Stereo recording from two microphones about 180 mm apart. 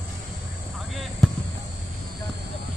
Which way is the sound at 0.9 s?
Centre (ahead or behind).